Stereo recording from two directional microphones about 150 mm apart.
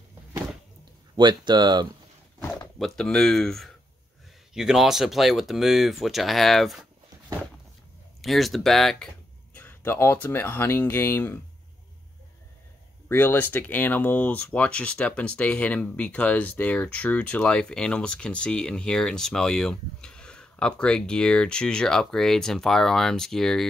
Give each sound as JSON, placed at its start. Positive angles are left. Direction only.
{"t": 1.1, "sound": "speech", "side_deg": -30}
{"t": 2.8, "sound": "speech", "side_deg": 5}
{"t": 8.2, "sound": "speech", "side_deg": 0}
{"t": 9.6, "sound": "speech", "side_deg": 15}
{"t": 13.1, "sound": "speech", "side_deg": 15}